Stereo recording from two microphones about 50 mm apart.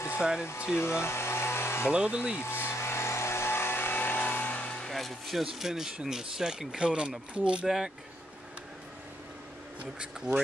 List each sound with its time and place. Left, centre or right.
0.2 s speech: centre
0.7 s vehicle: left
1.9 s speech: right
2.4 s vehicle: left
4.7 s speech: centre; by 7.6 s right
7.6 s speech: centre
10.3 s speech: centre